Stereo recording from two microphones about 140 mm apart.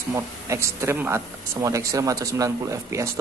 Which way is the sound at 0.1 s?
20° right (ahead or behind).